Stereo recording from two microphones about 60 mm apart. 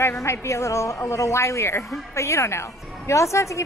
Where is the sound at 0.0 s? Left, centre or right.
Left.